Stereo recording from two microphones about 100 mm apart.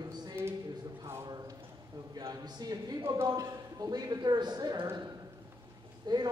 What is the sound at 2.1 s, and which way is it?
Speech, 40° right (ahead or behind).